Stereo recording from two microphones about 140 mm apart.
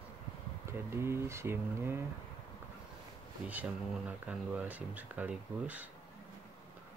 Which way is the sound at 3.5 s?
10° right (ahead or behind).